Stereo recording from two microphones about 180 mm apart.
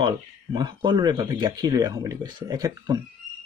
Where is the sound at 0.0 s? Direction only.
25° right (ahead or behind).